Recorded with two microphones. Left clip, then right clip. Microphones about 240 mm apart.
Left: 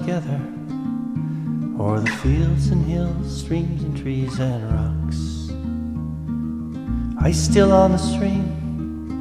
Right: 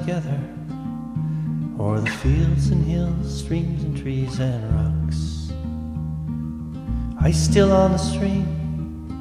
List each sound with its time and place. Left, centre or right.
0.0 s speech: centre
1.8 s speech: centre
7.2 s speech: centre